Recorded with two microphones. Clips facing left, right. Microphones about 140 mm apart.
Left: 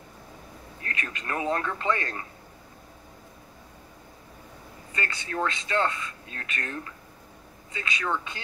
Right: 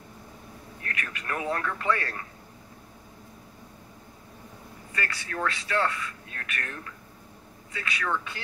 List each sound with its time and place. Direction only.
0.8 s speech: 25° left (ahead or behind)
4.9 s speech: 20° left (ahead or behind)